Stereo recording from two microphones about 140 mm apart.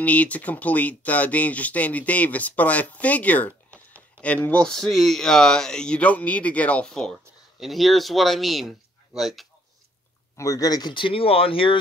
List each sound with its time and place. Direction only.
0.0 s speech: 10° left (ahead or behind)
10.3 s speech: 25° left (ahead or behind); by 11.7 s 40° left (ahead or behind)